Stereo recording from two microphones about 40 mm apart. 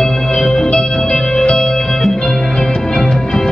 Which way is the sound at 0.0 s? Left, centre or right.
Centre.